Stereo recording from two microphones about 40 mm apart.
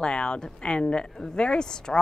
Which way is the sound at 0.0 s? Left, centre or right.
Left.